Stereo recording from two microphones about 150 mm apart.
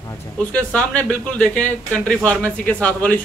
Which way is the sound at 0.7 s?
10° left (ahead or behind).